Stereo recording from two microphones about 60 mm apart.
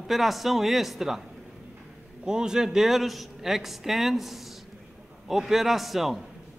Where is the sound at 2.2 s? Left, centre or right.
Centre.